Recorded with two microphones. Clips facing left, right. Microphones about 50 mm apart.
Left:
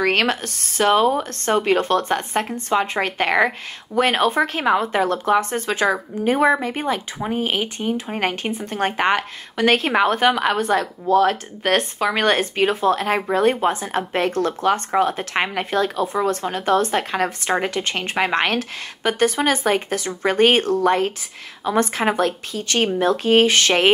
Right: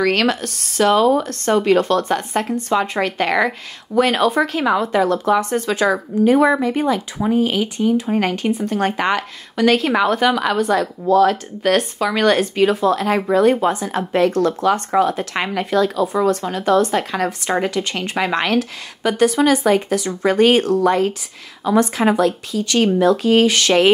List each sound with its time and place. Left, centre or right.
0.0 s speech: left